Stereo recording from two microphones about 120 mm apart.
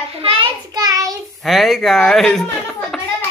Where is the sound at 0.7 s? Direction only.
30° right (ahead or behind).